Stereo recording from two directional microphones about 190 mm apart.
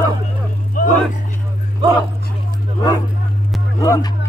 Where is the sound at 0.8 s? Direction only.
45° left (ahead or behind).